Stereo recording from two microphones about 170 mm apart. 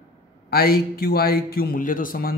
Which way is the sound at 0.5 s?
65° left (ahead or behind).